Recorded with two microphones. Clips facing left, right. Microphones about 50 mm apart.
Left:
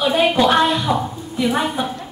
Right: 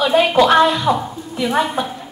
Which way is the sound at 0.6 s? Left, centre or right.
Right.